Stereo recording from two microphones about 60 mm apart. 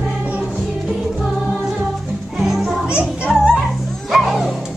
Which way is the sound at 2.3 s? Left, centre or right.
Centre.